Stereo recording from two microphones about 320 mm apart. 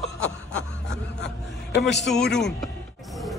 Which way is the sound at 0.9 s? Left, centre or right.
Left.